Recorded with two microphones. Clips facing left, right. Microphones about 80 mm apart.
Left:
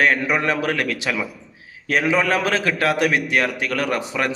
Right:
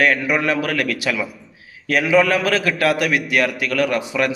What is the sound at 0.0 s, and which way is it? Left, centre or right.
A man's voice, left.